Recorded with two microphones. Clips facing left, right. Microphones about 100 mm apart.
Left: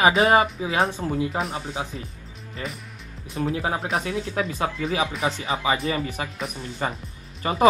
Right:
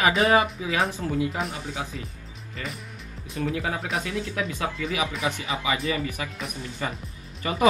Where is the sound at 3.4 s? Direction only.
35° left (ahead or behind).